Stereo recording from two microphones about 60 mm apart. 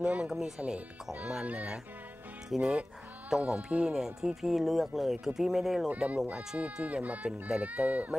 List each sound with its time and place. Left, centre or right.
0.0 s speech: right
2.5 s speech: centre
5.9 s speech: right